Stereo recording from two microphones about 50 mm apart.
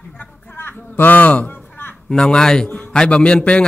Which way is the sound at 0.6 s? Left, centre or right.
Left.